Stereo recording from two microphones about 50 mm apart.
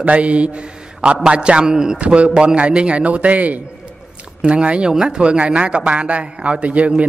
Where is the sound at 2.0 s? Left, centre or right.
Right.